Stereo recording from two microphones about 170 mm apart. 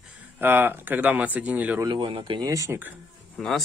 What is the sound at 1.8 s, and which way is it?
Speech, 30° right (ahead or behind).